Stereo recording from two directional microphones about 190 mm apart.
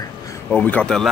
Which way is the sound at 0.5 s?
10° left (ahead or behind).